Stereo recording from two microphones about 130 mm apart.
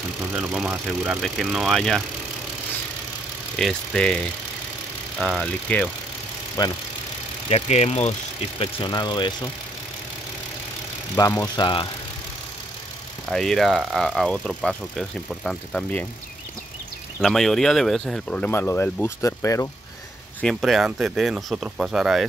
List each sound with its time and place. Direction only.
0.3 s speech: 10° right (ahead or behind)
3.5 s speech: 5° left (ahead or behind)
5.2 s speech: 5° left (ahead or behind)
6.6 s speech: 30° left (ahead or behind)
7.4 s speech: 50° left (ahead or behind)
8.5 s speech: 40° left (ahead or behind)
11.1 s speech: 25° left (ahead or behind)
13.3 s speech: 5° left (ahead or behind)
17.2 s speech: centre (ahead or behind); by 19.7 s 25° left (ahead or behind)
20.3 s speech: centre (ahead or behind)